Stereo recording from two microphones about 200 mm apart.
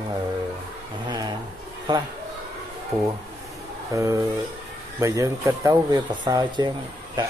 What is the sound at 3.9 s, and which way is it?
A man's voice, 15° right (ahead or behind).